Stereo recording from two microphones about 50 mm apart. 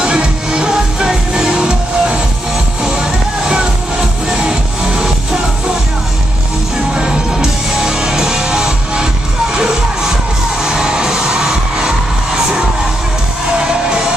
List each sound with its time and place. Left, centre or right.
0.0 s music: centre
7.0 s music: centre
13.6 s music: centre